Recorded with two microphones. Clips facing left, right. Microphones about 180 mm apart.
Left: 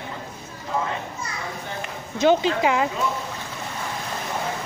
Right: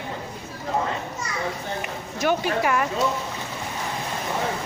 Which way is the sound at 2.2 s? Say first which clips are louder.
Left 4 dB; 20° left (ahead or behind).